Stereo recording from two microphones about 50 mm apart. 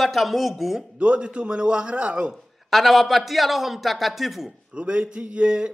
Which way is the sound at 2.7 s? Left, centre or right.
Centre.